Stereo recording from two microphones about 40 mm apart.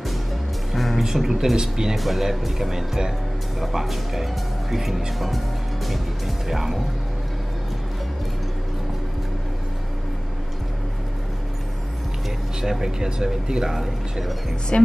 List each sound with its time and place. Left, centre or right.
0.7 s music: centre
1.0 s speech: centre
2.0 s speech: centre
5.9 s music: centre
12.6 s speech: centre
14.7 s a woman's voice: left